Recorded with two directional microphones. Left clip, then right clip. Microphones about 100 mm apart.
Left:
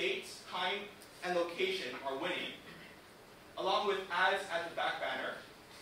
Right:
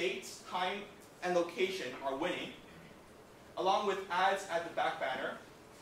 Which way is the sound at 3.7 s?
45° right (ahead or behind).